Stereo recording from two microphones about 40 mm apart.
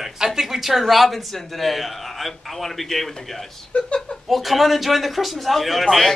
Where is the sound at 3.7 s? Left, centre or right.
Left.